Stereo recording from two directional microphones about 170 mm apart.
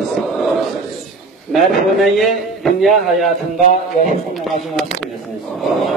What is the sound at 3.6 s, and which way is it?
A man's voice, 45° right (ahead or behind).